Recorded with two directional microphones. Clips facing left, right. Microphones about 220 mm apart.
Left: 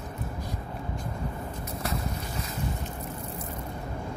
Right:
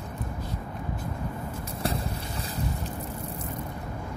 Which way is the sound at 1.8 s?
30° right (ahead or behind).